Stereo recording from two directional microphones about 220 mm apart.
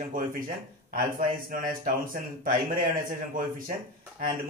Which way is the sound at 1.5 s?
40° right (ahead or behind).